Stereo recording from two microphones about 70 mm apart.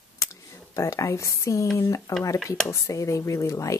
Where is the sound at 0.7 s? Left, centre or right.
Left.